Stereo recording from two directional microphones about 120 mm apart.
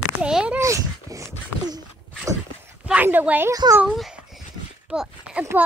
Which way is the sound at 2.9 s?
15° right (ahead or behind).